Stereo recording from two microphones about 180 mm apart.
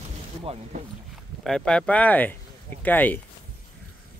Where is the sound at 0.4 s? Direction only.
30° right (ahead or behind).